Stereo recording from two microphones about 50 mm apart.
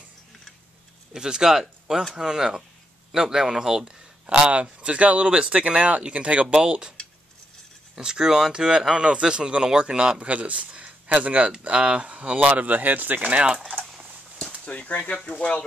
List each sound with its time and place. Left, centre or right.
1.1 s speech: centre
4.3 s speech: right
7.9 s speech: centre; by 13.4 s right
14.6 s speech: left